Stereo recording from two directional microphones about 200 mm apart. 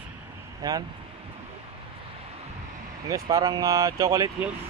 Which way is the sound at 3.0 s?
15° right (ahead or behind).